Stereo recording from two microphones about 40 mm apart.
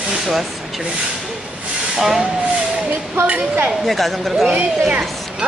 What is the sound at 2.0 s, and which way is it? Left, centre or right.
Speech, centre.